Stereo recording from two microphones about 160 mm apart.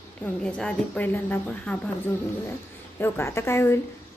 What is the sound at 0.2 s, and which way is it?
A woman's voice, 5° left (ahead or behind).